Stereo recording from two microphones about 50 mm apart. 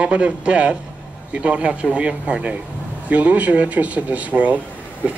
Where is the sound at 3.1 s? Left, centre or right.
Right.